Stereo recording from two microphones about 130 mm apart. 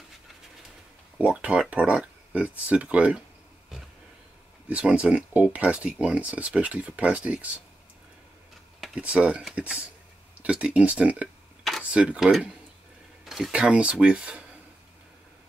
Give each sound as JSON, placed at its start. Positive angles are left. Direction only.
{"t": 1.1, "sound": "speech", "side_deg": -10}
{"t": 4.6, "sound": "speech", "side_deg": -10}
{"t": 8.8, "sound": "speech", "side_deg": -5}